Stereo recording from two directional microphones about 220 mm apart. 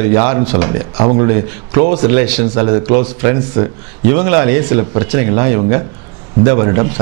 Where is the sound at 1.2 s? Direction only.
15° right (ahead or behind).